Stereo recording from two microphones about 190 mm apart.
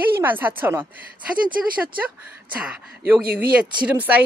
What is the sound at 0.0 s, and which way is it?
Speech, 10° right (ahead or behind).